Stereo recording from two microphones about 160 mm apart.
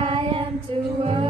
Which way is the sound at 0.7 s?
35° right (ahead or behind).